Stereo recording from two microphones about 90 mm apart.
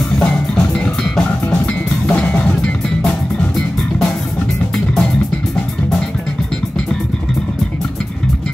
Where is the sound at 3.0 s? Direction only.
5° left (ahead or behind).